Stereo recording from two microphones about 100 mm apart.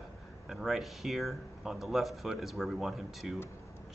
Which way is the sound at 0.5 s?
5° right (ahead or behind).